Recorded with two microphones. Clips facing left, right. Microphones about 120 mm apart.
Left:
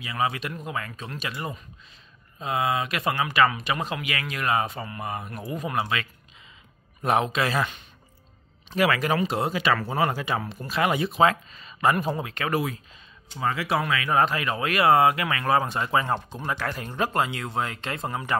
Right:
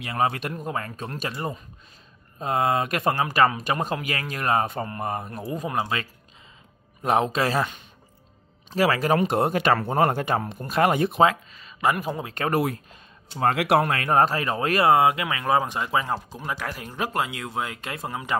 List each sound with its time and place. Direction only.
0.0 s speech: 50° right (ahead or behind); by 6.0 s 30° right (ahead or behind)
7.3 s speech: 35° right (ahead or behind)
8.6 s speech: 35° right (ahead or behind)
9.2 s speech: 55° right (ahead or behind)
11.8 s speech: 10° right (ahead or behind)
12.4 s speech: 50° right (ahead or behind)
13.4 s speech: 65° right (ahead or behind); by 14.9 s 35° right (ahead or behind)
14.9 s speech: 20° right (ahead or behind)